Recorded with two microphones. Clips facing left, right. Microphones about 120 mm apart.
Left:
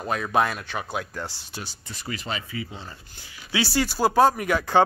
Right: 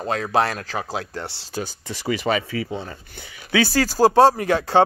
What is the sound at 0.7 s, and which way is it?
Speech, 35° right (ahead or behind).